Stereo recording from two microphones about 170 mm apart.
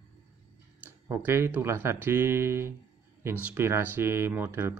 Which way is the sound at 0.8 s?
15° right (ahead or behind).